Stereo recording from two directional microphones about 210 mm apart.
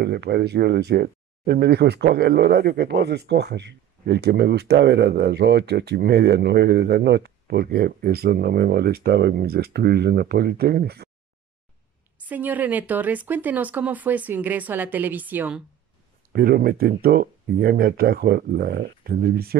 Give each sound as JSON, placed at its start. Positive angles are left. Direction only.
{"t": 0.0, "sound": "speech", "side_deg": -50}
{"t": 12.2, "sound": "speech", "side_deg": -10}
{"t": 16.3, "sound": "speech", "side_deg": -45}